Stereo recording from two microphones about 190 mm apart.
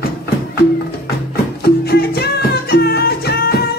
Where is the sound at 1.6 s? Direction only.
55° left (ahead or behind).